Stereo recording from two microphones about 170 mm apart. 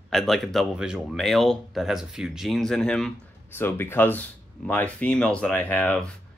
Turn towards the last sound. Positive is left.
turn(degrees=10)  # may be behind; listen again after turning